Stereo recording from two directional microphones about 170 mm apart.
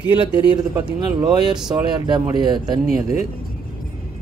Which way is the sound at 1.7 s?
25° right (ahead or behind).